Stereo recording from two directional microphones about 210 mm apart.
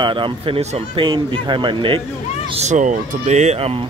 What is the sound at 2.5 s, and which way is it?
Speech, 35° right (ahead or behind).